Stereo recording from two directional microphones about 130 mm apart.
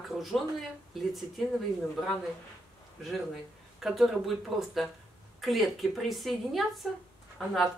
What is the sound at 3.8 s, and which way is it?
A woman's voice, centre (ahead or behind).